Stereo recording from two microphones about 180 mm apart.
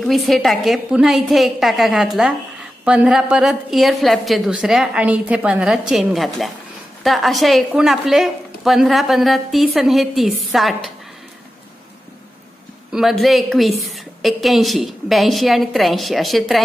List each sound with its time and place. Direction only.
0.0 s a woman's voice: centre (ahead or behind)
12.9 s a woman's voice: centre (ahead or behind)